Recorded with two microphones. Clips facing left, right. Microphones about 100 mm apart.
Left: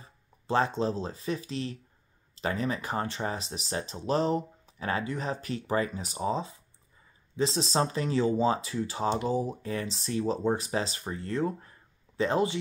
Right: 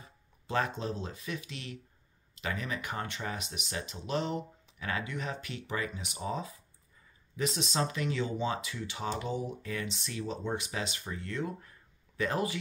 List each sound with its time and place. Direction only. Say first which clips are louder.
0.5 s speech: left 6 dB; 30° left (ahead or behind)